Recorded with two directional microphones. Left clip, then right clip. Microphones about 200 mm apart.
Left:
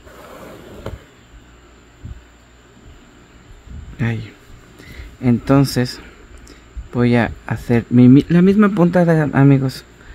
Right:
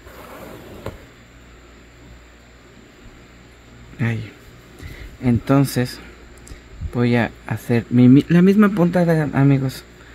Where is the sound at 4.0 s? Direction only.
10° left (ahead or behind).